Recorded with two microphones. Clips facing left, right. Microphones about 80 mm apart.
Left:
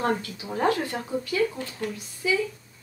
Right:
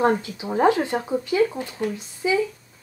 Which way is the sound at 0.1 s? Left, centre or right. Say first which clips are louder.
Right 4 dB; right.